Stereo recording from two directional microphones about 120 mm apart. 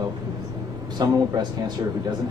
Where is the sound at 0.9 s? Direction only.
35° right (ahead or behind).